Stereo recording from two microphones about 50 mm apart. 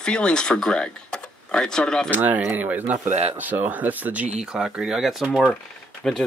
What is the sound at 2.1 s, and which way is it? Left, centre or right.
Speech, right.